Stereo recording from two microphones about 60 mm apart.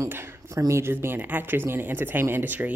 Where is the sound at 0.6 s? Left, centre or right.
Right.